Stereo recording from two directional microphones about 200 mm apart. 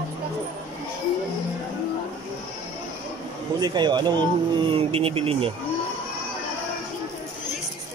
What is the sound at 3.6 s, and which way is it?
Speech, 20° right (ahead or behind).